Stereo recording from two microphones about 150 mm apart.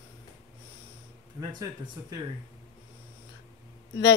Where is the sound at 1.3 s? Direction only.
25° right (ahead or behind).